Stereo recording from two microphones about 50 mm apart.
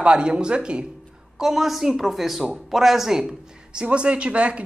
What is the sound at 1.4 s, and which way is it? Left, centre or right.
Speech, centre.